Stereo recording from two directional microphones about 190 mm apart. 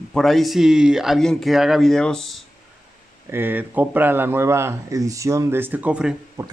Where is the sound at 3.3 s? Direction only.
10° right (ahead or behind).